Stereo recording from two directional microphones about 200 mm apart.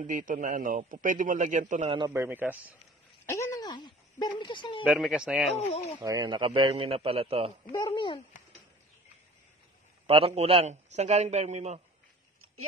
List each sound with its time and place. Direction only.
0.0 s a man's voice: 40° right (ahead or behind)
2.0 s a man's voice: 15° right (ahead or behind)
3.3 s speech: 15° left (ahead or behind)
4.8 s speech: 5° right (ahead or behind)
5.6 s speech: 35° left (ahead or behind)
5.9 s a man's voice: 20° right (ahead or behind)
7.7 s speech: 20° left (ahead or behind)
10.0 s a man's voice: 30° right (ahead or behind)